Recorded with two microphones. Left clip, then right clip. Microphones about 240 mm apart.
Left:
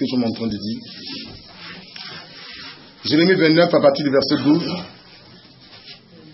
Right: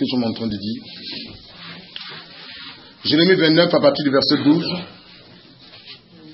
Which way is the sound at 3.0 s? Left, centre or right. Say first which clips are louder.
Even; centre.